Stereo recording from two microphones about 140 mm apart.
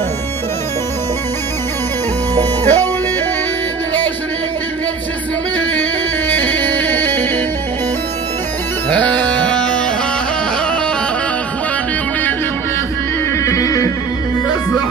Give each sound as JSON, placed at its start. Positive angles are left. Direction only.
{"t": 2.6, "sound": "music", "side_deg": 15}
{"t": 5.8, "sound": "music", "side_deg": 10}
{"t": 8.9, "sound": "music", "side_deg": 10}
{"t": 13.4, "sound": "music", "side_deg": 20}